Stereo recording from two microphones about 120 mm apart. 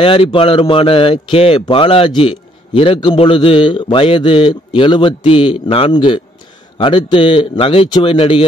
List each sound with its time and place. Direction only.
0.0 s a man's voice: 50° left (ahead or behind)